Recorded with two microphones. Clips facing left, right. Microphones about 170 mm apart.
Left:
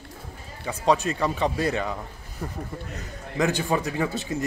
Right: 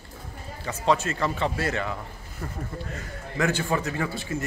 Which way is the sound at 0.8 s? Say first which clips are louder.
Left 2 dB; 15° left (ahead or behind).